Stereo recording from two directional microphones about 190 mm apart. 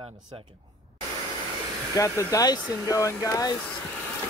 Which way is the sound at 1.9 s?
20° left (ahead or behind).